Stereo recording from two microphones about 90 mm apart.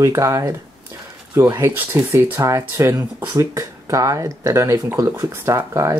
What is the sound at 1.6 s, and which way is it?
Speech, 25° right (ahead or behind).